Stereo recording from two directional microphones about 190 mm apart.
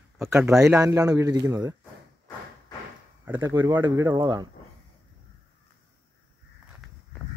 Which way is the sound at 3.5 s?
10° right (ahead or behind).